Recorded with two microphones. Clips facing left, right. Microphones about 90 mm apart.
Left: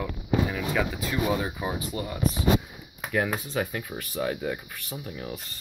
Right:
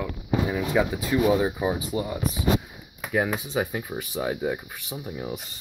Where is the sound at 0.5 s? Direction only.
20° right (ahead or behind).